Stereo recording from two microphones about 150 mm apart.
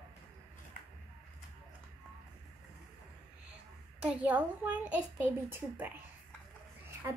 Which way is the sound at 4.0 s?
10° right (ahead or behind).